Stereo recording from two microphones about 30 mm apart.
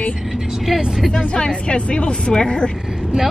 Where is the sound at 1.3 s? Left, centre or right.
Left.